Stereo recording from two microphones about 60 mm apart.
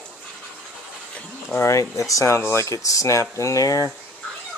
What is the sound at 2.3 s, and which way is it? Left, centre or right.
Speech, left.